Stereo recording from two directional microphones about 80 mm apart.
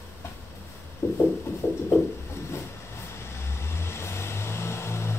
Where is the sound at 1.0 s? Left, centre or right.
Left.